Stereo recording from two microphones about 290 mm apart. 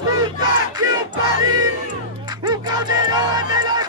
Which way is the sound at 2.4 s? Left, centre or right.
Centre.